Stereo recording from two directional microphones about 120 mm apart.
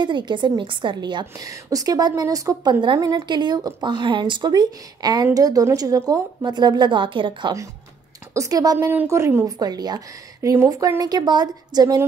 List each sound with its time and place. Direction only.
0.0 s a woman's voice: 40° right (ahead or behind)
1.2 s a woman's voice: 25° right (ahead or behind); by 7.5 s 40° right (ahead or behind)
8.3 s a woman's voice: 30° right (ahead or behind)
8.7 s a woman's voice: 20° right (ahead or behind)